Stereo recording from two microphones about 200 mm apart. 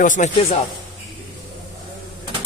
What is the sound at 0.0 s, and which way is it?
Speech, 35° left (ahead or behind).